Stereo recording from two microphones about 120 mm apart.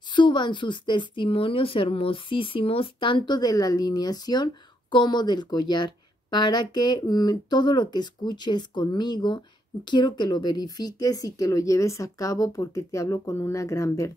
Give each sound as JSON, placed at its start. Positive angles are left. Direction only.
{"t": 0.1, "sound": "a woman's voice", "side_deg": 40}